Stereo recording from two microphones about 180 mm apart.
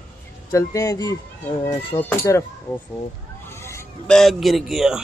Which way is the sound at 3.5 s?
15° left (ahead or behind).